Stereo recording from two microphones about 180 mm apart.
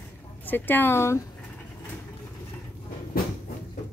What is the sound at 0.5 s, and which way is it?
Speech, 10° left (ahead or behind).